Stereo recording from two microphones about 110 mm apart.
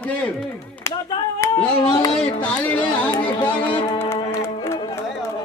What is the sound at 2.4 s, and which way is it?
A man's voice, 15° left (ahead or behind).